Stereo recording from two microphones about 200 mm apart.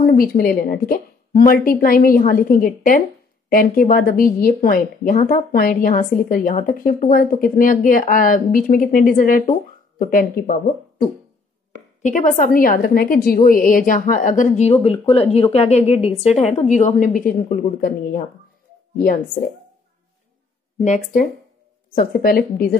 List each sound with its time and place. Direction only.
0.0 s a woman's voice: 45° left (ahead or behind)
12.0 s a woman's voice: 40° left (ahead or behind)
20.8 s a woman's voice: 40° left (ahead or behind)